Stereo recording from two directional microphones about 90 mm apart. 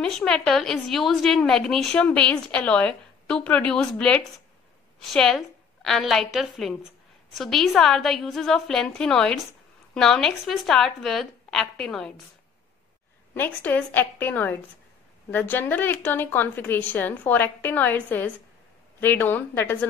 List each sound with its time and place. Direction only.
0.0 s a woman's voice: 10° left (ahead or behind)
13.3 s a woman's voice: 20° left (ahead or behind)